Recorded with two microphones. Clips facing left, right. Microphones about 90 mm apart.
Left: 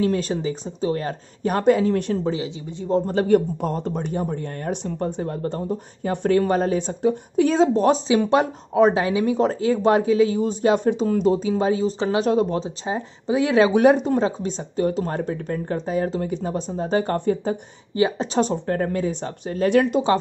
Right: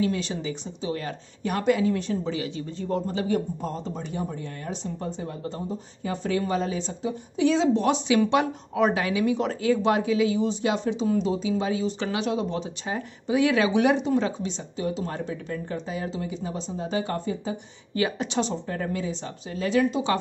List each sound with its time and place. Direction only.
0.0 s a woman's voice: 45° left (ahead or behind)
2.3 s speech: 20° left (ahead or behind)
3.1 s speech: 55° left (ahead or behind); by 12.3 s 35° left (ahead or behind)
12.3 s speech: 45° left (ahead or behind)
12.6 s a woman's voice: 25° left (ahead or behind); by 17.6 s 50° left (ahead or behind)
17.9 s a woman's voice: 30° left (ahead or behind)
18.4 s speech: 50° left (ahead or behind)